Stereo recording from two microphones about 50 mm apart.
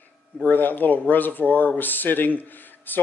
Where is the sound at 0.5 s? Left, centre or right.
Left.